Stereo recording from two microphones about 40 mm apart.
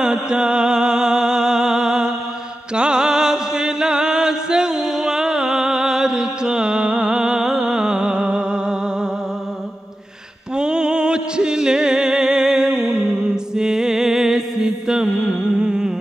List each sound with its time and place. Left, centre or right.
0.0 s music: centre
10.5 s music: right
13.3 s mantra: centre